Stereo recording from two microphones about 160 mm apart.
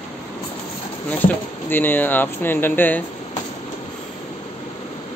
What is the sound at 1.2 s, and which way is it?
Speech, 10° left (ahead or behind).